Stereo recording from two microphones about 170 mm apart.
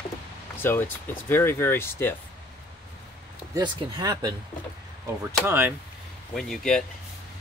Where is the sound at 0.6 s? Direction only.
15° left (ahead or behind).